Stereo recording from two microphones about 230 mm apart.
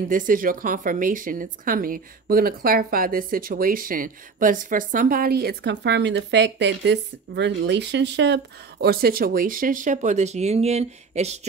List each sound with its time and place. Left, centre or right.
0.1 s a woman's voice: right